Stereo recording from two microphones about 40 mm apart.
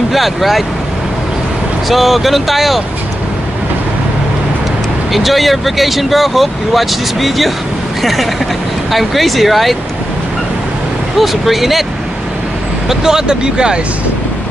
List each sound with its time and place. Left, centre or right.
0.1 s speech: centre
1.9 s speech: centre
5.1 s speech: centre
11.1 s speech: centre
12.8 s speech: centre